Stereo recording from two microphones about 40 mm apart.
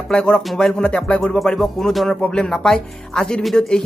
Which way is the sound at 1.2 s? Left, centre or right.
Centre.